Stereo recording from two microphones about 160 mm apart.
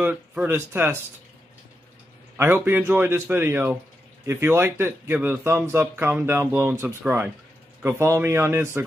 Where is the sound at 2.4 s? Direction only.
15° right (ahead or behind).